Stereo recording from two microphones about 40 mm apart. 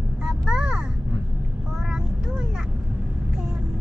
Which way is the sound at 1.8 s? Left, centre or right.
Centre.